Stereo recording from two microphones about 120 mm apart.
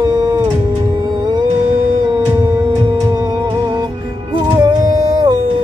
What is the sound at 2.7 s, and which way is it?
Music, 35° right (ahead or behind).